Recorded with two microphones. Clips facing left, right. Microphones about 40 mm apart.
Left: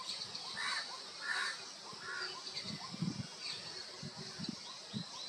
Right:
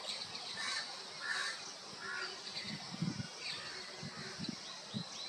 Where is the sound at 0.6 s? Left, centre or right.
Centre.